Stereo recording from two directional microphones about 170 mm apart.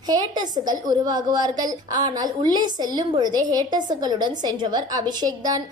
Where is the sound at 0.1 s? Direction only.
25° right (ahead or behind).